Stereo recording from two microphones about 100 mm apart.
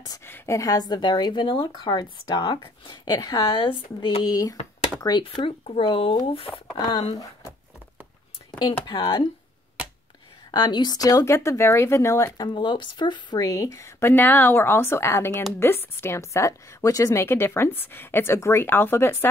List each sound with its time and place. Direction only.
0.2 s a sound: 25° left (ahead or behind)
0.6 s speech: 40° left (ahead or behind); by 3.0 s 55° left (ahead or behind)
3.1 s speech: 40° left (ahead or behind)
4.2 s speech: 40° left (ahead or behind)
5.2 s speech: 60° left (ahead or behind)
6.8 s speech: 45° left (ahead or behind)
8.5 s speech: 45° left (ahead or behind)
10.5 s speech: 45° left (ahead or behind)
11.3 s a woman's voice: 25° left (ahead or behind)
12.4 s speech: 50° left (ahead or behind)
13.5 s a woman's voice: 30° left (ahead or behind)